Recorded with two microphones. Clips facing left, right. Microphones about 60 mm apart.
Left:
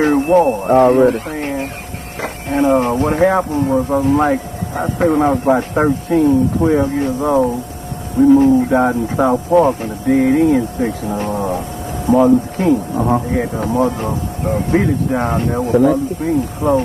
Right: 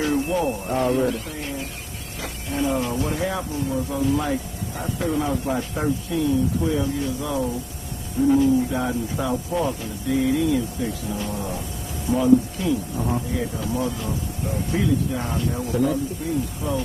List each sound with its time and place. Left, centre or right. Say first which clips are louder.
0.0 s speech: left 10 dB; left